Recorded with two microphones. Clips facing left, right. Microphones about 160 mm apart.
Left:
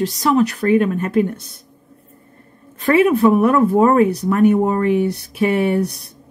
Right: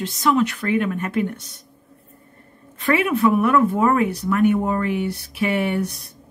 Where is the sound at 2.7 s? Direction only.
35° left (ahead or behind).